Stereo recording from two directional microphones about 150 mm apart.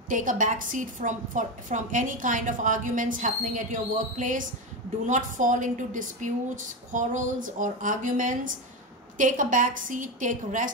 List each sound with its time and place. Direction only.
0.1 s a woman's voice: 60° right (ahead or behind)